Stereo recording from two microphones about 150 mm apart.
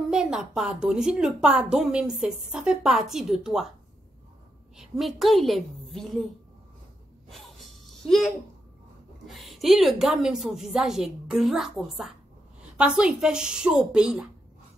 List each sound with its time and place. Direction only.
0.1 s a woman's voice: 5° right (ahead or behind)
4.7 s a woman's voice: centre (ahead or behind)
7.2 s a sound: centre (ahead or behind)
9.3 s a woman's voice: centre (ahead or behind)